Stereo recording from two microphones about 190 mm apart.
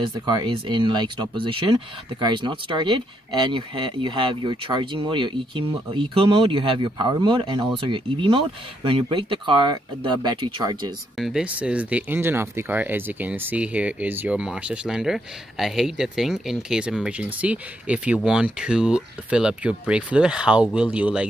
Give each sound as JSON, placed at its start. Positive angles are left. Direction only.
{"t": 0.0, "sound": "speech", "side_deg": -25}
{"t": 11.1, "sound": "speech", "side_deg": 0}